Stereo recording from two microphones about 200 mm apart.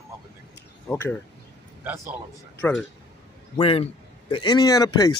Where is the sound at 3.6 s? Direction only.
30° left (ahead or behind).